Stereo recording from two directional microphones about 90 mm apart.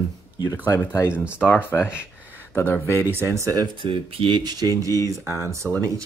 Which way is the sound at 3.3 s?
35° right (ahead or behind).